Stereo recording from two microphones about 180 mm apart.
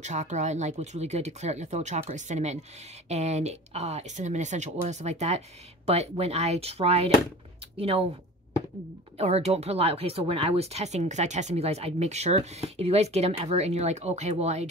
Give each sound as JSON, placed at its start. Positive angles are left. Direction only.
{"t": 0.0, "sound": "speech", "side_deg": -40}
{"t": 9.2, "sound": "speech", "side_deg": -35}